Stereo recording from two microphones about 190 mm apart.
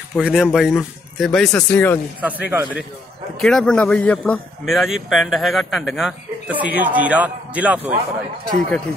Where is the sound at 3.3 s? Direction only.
5° left (ahead or behind).